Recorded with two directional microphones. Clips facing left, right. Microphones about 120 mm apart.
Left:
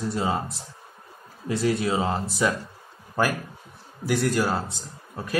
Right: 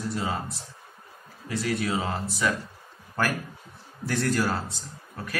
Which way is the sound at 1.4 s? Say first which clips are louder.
Left 4 dB; 30° left (ahead or behind).